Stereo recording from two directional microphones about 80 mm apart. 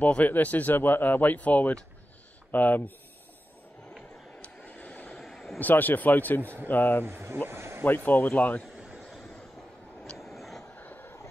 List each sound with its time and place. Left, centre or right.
0.0 s speech: centre
4.4 s vehicle: centre
5.2 s a sound: centre
5.6 s speech: left
7.1 s speech: right
7.4 s a sound: right
7.8 s speech: left
8.6 s a sound: centre
10.1 s vehicle: centre
10.8 s vehicle: left